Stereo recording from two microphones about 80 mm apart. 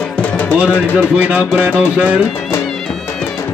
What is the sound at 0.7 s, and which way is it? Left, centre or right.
Speech, left.